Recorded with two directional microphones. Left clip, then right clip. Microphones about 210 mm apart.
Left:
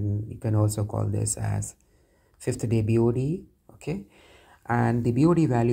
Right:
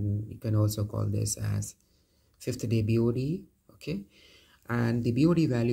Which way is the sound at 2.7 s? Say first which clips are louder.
Left 4 dB; 25° right (ahead or behind).